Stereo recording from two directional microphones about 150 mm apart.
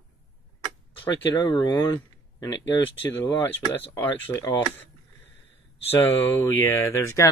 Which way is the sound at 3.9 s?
15° left (ahead or behind).